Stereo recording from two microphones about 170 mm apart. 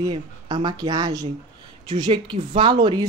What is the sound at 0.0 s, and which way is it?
Speech, 25° right (ahead or behind).